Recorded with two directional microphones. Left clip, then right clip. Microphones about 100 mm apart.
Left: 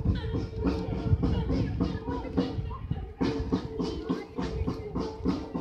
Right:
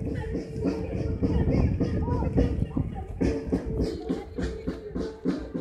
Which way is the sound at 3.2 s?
20° left (ahead or behind).